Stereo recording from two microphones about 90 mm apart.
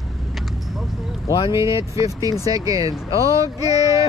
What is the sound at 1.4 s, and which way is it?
Speech, 35° right (ahead or behind).